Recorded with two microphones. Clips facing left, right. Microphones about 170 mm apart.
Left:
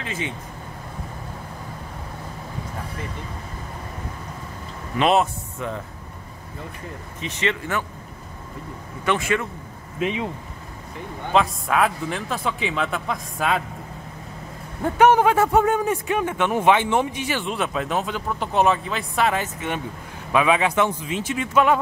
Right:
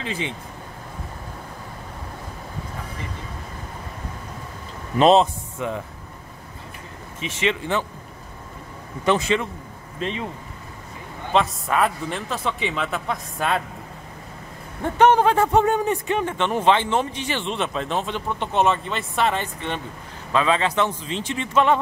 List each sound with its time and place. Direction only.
0.0 s speech: 25° right (ahead or behind)
4.9 s a man's voice: 35° right (ahead or behind)
5.2 s speech: 15° right (ahead or behind)
7.4 s speech: 20° right (ahead or behind)
9.0 s a man's voice: 35° right (ahead or behind)
9.9 s speech: 10° left (ahead or behind)
11.3 s speech: centre (ahead or behind)
14.8 s a man's voice: 5° left (ahead or behind)